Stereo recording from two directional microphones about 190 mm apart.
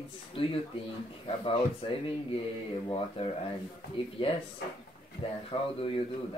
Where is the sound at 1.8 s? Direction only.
30° left (ahead or behind).